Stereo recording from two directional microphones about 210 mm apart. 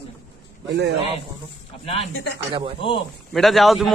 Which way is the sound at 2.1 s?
55° left (ahead or behind).